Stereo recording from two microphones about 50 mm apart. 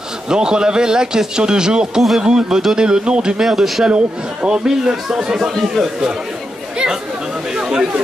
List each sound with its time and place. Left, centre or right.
0.3 s a man's voice: centre
3.4 s speech: centre
3.9 s a man's voice: right
4.6 s a man's voice: centre
7.5 s chatter: centre